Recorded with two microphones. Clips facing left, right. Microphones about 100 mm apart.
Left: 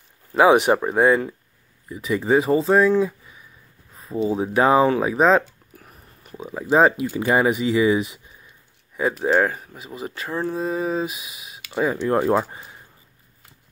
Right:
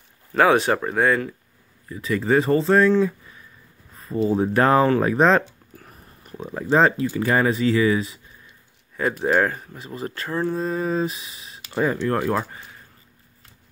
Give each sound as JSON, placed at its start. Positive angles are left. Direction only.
{"t": 0.3, "sound": "speech", "side_deg": 15}
{"t": 3.9, "sound": "a sound", "side_deg": 0}
{"t": 4.3, "sound": "speech", "side_deg": 0}
{"t": 9.1, "sound": "speech", "side_deg": 0}